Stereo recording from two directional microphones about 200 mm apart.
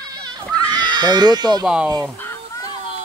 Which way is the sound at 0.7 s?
20° right (ahead or behind).